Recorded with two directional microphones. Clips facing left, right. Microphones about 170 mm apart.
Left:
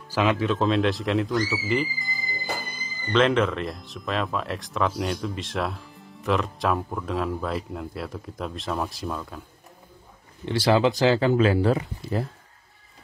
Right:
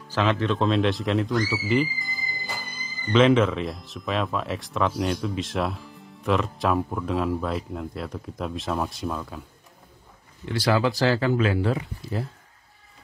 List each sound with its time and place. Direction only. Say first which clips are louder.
0.1 s speech: left 1 dB; 10° left (ahead or behind)
10.4 s speech: left 2 dB; 25° left (ahead or behind)